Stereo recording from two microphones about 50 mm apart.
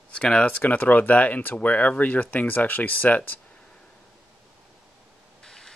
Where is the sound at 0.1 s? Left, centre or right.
Left.